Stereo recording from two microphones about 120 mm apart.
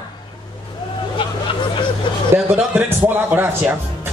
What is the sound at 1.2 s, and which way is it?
Hubbub, 45° left (ahead or behind).